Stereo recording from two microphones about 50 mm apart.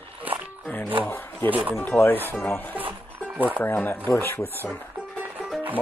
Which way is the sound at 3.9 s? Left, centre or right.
Left.